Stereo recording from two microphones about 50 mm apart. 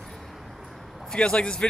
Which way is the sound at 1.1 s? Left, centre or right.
Centre.